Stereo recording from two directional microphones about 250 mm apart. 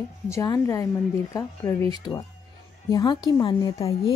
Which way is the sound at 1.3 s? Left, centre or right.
Centre.